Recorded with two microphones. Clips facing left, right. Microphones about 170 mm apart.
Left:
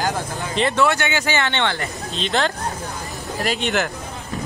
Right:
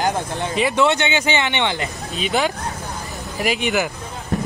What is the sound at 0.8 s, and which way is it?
Speech, 20° right (ahead or behind).